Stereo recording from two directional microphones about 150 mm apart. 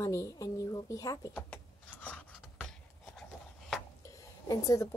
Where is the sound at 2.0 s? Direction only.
10° left (ahead or behind).